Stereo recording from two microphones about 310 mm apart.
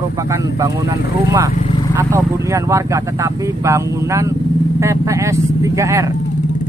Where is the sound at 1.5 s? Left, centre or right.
Centre.